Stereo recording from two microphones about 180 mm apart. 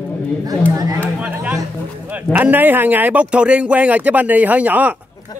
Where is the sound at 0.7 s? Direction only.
20° right (ahead or behind).